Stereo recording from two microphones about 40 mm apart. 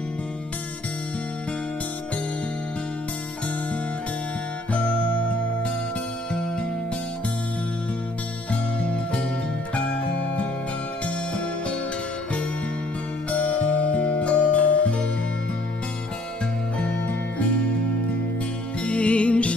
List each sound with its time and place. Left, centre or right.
8.8 s music: left
13.3 s music: left
18.9 s music: left